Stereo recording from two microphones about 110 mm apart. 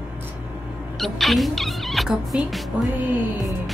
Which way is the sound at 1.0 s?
Centre (ahead or behind).